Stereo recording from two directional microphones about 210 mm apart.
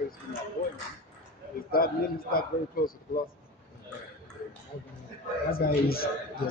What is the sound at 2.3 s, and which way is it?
Speech, 45° left (ahead or behind).